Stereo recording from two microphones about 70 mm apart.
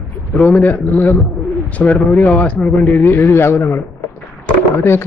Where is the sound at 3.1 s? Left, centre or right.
Left.